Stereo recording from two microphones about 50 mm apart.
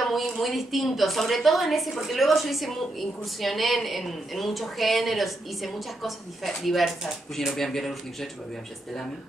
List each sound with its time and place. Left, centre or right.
0.0 s a woman's voice: centre